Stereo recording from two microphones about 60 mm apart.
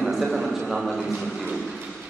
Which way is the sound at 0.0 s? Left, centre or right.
Centre.